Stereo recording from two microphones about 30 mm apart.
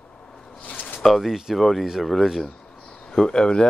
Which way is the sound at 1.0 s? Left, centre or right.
Centre.